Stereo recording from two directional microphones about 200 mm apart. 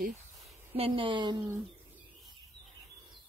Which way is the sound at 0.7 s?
30° right (ahead or behind).